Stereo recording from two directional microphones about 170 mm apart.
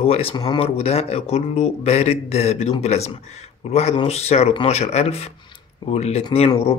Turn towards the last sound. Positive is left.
turn(degrees=35)  # may be behind; listen again after turning